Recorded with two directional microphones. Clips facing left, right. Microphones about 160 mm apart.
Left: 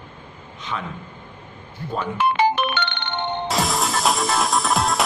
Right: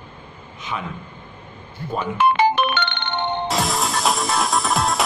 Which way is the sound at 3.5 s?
Centre (ahead or behind).